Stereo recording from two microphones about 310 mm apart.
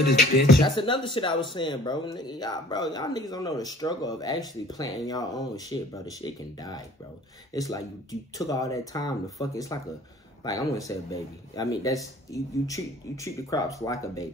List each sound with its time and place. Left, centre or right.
0.0 s speech: left
0.6 s speech: centre